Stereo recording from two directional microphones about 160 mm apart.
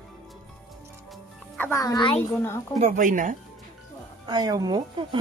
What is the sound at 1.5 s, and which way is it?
Music, 10° left (ahead or behind).